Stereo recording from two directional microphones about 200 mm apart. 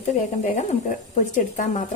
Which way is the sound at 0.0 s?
35° left (ahead or behind).